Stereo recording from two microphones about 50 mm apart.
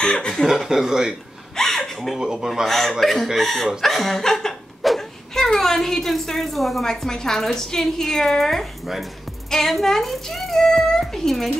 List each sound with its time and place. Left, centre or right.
0.0 s chuckle: centre
0.5 s speech: centre
1.6 s a sound: centre
2.4 s a child's voice: centre